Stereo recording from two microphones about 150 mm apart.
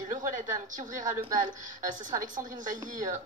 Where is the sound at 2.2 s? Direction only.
60° right (ahead or behind).